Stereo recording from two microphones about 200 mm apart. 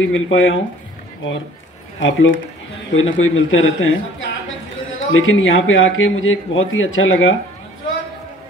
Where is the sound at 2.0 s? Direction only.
75° left (ahead or behind).